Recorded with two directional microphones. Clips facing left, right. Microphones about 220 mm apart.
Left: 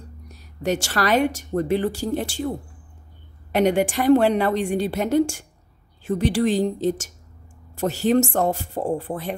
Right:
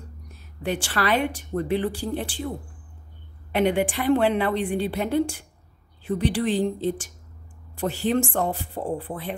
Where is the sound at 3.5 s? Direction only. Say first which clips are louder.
Left 3 dB; 45° left (ahead or behind).